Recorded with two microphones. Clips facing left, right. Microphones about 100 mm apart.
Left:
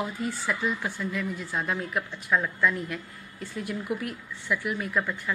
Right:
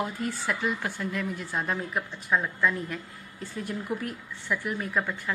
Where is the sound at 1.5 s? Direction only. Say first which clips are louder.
Left 1 dB; 30° right (ahead or behind).